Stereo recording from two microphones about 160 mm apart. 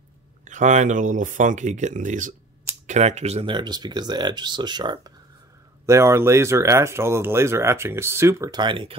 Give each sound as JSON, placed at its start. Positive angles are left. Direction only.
{"t": 0.5, "sound": "speech", "side_deg": -50}
{"t": 3.5, "sound": "speech", "side_deg": -25}
{"t": 5.9, "sound": "speech", "side_deg": -15}